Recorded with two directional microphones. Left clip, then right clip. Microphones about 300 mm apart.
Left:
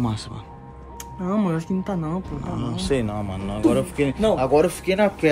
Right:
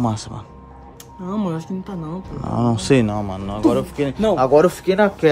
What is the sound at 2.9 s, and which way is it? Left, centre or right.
Speech, right.